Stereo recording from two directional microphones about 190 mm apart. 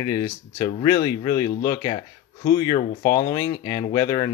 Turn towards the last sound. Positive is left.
turn(degrees=20)  # may be behind; listen again after turning